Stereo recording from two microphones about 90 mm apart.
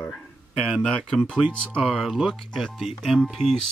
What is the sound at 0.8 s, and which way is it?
Speech, 10° left (ahead or behind).